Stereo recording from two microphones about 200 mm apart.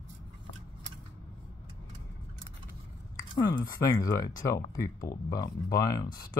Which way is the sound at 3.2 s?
20° left (ahead or behind).